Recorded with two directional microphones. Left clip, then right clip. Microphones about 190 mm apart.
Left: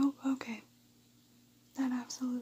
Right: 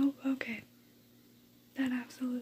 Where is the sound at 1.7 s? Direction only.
5° left (ahead or behind).